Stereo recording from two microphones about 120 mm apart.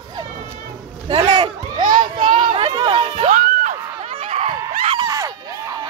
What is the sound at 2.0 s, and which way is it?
A child's voice, 40° right (ahead or behind).